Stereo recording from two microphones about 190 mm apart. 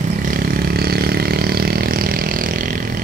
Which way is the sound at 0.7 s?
55° right (ahead or behind).